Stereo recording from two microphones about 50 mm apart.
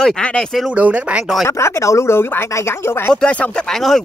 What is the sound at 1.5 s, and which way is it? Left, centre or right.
Speech, left.